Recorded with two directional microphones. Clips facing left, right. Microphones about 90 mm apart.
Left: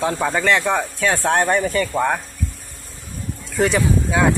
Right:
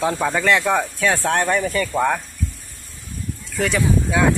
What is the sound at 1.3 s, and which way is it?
Speech, 15° left (ahead or behind).